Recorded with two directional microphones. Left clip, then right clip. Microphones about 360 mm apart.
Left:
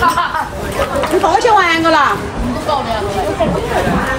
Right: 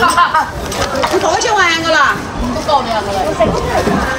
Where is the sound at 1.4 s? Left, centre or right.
Centre.